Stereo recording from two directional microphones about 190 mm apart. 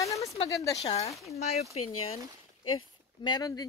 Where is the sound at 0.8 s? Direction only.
35° left (ahead or behind).